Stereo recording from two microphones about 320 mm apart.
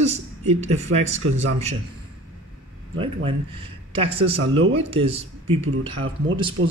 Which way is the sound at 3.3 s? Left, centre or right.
Centre.